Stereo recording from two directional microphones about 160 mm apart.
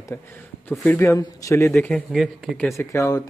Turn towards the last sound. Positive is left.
turn(degrees=20)  # may be behind; listen again after turning